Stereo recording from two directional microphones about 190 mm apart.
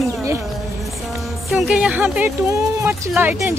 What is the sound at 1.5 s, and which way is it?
Speech, 5° right (ahead or behind).